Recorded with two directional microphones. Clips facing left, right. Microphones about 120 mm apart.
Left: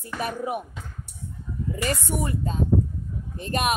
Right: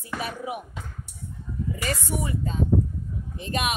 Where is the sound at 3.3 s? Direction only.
45° left (ahead or behind).